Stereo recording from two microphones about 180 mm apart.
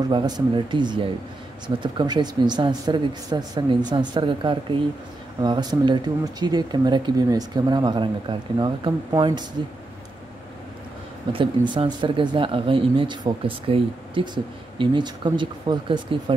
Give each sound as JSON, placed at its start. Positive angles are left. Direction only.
{"t": 0.1, "sound": "speech", "side_deg": -25}
{"t": 11.3, "sound": "speech", "side_deg": -30}